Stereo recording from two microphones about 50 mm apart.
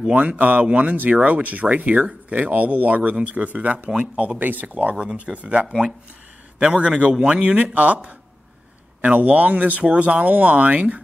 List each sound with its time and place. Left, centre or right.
0.1 s speech: right
4.9 s speech: right
5.7 s speech: centre
6.6 s speech: right
7.4 s speech: right